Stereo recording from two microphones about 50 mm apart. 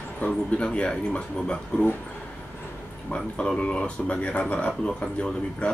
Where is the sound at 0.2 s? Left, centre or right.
Left.